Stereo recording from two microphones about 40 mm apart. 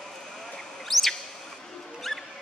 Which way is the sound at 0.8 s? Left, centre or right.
Centre.